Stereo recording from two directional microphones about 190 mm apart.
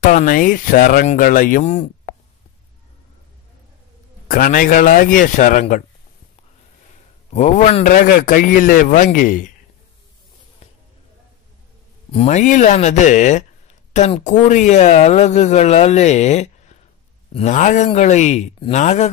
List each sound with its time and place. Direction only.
0.0 s speech: 40° left (ahead or behind)
4.3 s speech: 45° left (ahead or behind)
7.3 s speech: 40° left (ahead or behind)
10.6 s basketball bounce: 35° left (ahead or behind)
12.1 s speech: 35° left (ahead or behind)